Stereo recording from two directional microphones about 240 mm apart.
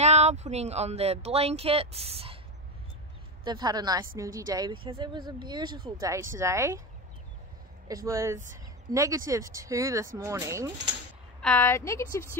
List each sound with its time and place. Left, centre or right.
0.0 s speech: right
3.4 s speech: centre
7.9 s speech: centre
11.4 s a woman's voice: centre